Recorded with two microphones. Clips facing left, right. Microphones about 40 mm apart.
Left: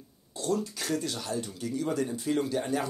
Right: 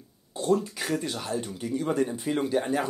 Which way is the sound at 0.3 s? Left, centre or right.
Right.